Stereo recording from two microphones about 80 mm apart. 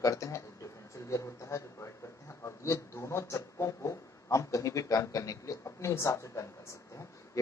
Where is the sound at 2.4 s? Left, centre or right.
Left.